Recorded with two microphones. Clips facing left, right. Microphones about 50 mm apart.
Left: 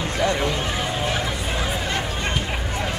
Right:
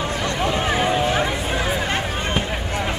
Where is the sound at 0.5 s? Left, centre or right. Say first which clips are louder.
Right 5 dB; right.